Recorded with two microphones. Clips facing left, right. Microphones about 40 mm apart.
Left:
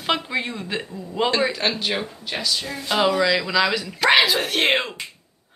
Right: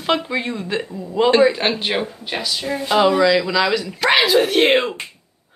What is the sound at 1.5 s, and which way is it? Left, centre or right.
Speech, right.